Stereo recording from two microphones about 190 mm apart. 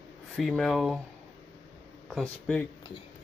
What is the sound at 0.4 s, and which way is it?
Speech, centre (ahead or behind).